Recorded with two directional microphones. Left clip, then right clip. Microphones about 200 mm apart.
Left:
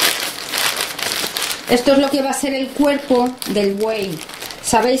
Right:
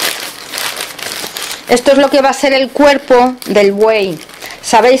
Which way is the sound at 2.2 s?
25° right (ahead or behind).